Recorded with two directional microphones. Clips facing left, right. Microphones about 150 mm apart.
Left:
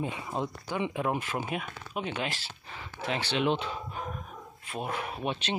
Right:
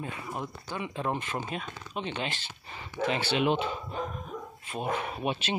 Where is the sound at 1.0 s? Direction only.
5° left (ahead or behind).